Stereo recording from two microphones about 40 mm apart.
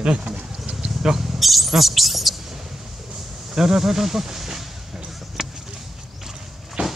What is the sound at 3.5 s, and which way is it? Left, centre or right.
Speech, centre.